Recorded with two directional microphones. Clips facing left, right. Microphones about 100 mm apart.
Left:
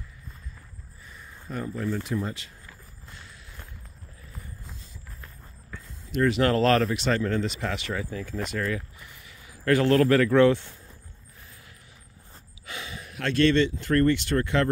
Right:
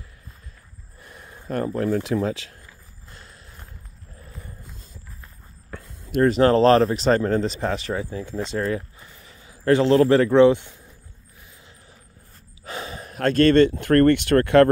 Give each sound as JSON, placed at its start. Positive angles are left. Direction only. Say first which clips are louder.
{"t": 1.0, "sound": "speech", "louder": "right 6 dB", "side_deg": -65}
{"t": 5.7, "sound": "a sound", "louder": "right 5 dB", "side_deg": -55}
{"t": 6.2, "sound": "speech", "louder": "right 6 dB", "side_deg": -35}
{"t": 12.6, "sound": "speech", "louder": "right 6 dB", "side_deg": -40}